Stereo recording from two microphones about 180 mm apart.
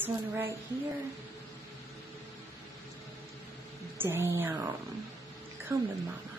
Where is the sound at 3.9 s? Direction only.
15° right (ahead or behind).